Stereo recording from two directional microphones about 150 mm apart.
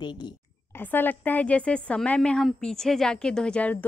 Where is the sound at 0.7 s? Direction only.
10° left (ahead or behind).